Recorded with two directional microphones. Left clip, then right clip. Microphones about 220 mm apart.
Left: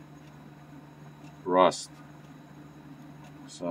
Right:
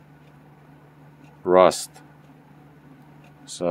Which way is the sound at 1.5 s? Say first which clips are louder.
Right 7 dB; 55° right (ahead or behind).